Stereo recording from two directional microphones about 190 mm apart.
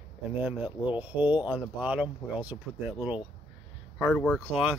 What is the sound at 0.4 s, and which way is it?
Speech, 10° right (ahead or behind).